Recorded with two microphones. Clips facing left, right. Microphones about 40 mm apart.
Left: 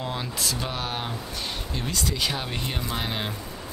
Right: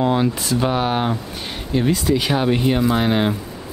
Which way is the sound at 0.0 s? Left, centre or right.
Right.